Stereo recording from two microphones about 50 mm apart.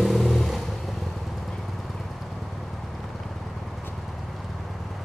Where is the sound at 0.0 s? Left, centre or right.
Centre.